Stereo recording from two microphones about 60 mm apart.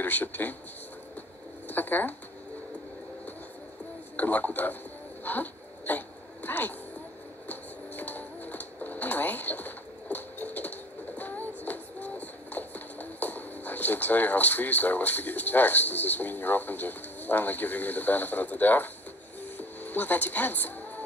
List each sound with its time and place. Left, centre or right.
0.0 s speech: left
1.7 s speech: left
4.2 s speech: left
5.2 s dog: left
7.4 s music: left